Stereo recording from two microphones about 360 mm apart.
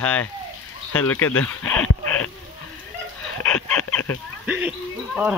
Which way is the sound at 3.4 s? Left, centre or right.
Centre.